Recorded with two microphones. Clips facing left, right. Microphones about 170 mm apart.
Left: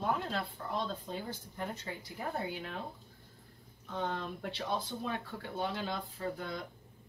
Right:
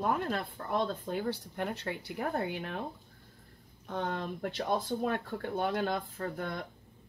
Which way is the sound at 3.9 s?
55° right (ahead or behind).